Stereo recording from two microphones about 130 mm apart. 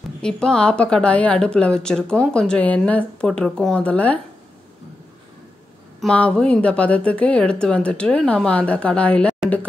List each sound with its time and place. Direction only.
0.2 s a woman's voice: 5° left (ahead or behind)
5.9 s a woman's voice: 10° left (ahead or behind)